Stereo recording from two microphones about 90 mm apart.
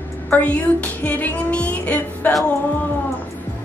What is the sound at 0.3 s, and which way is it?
Music, 15° left (ahead or behind).